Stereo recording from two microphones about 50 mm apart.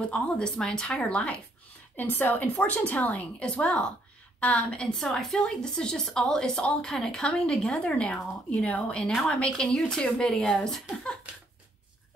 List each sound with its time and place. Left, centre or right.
0.1 s speech: left
2.0 s a woman's voice: left; by 4.9 s centre
4.9 s a woman's voice: centre